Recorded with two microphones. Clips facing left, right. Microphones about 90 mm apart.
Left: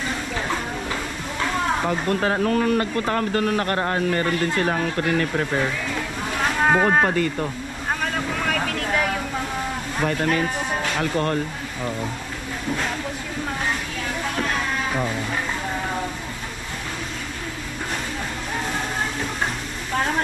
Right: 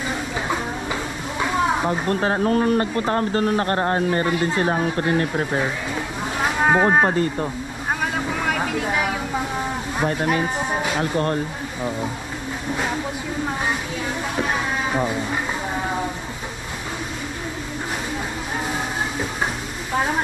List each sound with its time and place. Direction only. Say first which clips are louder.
1.4 s a sound: right 3 dB; 10° right (ahead or behind)
1.9 s speech: right 1 dB; 30° right (ahead or behind)
4.3 s speech: right 1 dB; 15° right (ahead or behind)
4.6 s speech: right 2 dB; 30° right (ahead or behind)
6.4 s boat: right 1 dB; 10° right (ahead or behind)
8.0 s vehicle: right 2 dB; 10° right (ahead or behind)
10.2 s speech: right 1 dB; 15° right (ahead or behind)
14.3 s music: right 2 dB; 15° right (ahead or behind)
19.9 s a woman's voice: right 1 dB; 10° right (ahead or behind)